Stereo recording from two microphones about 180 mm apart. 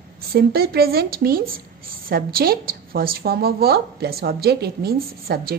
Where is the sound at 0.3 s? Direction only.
60° right (ahead or behind).